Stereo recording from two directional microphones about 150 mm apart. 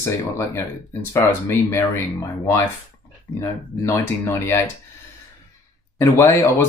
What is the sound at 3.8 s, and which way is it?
Speech, 15° left (ahead or behind).